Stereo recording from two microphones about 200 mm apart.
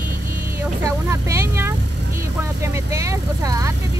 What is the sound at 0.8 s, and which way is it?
Speech, 15° right (ahead or behind).